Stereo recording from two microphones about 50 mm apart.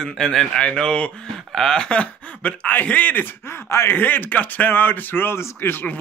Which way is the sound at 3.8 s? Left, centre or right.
Left.